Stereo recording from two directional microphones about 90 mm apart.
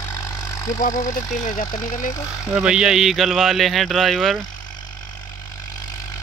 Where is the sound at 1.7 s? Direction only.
45° left (ahead or behind).